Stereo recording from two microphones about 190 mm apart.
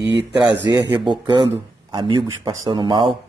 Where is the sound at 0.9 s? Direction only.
20° right (ahead or behind).